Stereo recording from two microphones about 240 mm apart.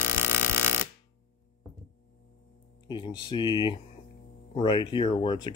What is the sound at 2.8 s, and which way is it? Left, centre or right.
Speech, centre.